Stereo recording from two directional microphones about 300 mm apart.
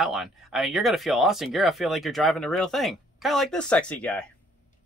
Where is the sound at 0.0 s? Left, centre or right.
Centre.